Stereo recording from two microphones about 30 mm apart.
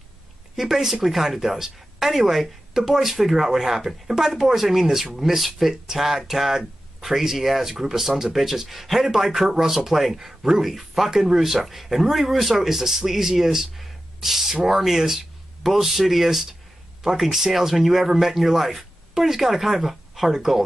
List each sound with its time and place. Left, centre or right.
0.6 s speech: centre
7.7 s speech: centre
10.1 s speech: centre
10.6 s speech: centre
11.1 s speech: centre
11.3 s speech: centre